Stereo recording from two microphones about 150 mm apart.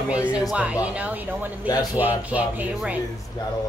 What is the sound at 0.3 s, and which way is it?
Speech, 10° right (ahead or behind).